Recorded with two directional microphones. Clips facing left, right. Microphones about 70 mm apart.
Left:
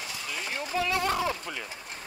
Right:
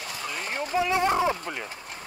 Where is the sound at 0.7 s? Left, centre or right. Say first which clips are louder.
Right 4 dB; right.